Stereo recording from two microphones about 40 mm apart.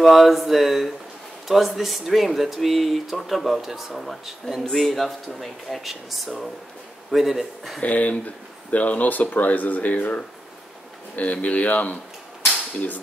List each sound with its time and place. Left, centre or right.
0.0 s speech: centre
7.8 s speech: left
11.4 s speech: left